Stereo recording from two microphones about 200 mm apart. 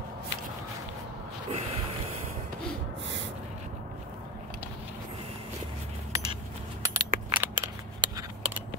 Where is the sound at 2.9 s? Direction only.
65° right (ahead or behind).